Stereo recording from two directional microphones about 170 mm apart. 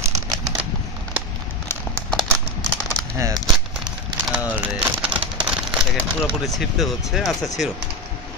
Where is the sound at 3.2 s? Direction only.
20° right (ahead or behind).